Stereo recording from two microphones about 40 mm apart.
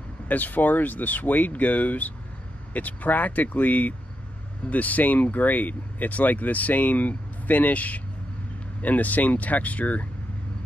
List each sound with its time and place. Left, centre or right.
0.3 s speech: left